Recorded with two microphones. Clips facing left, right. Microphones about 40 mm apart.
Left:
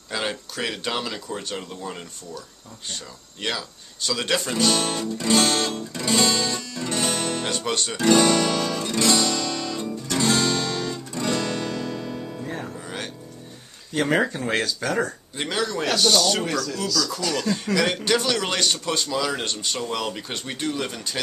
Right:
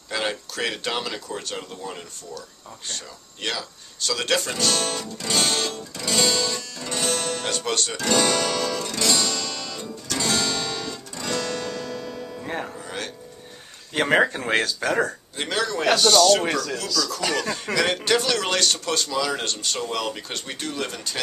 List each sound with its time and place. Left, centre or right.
0.1 s a man's voice: centre
3.4 s speech: centre
8.0 s guitar: centre
12.8 s music: centre
13.9 s a man's voice: right; by 16.3 s centre
16.6 s speech: right
17.4 s a man's voice: centre
19.5 s speech: centre
19.8 s a man's voice: centre